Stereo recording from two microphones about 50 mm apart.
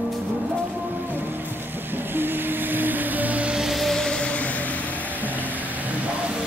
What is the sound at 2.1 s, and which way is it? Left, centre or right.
Music, right.